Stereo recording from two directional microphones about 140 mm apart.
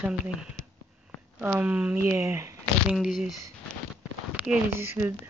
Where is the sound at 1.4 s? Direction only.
10° right (ahead or behind).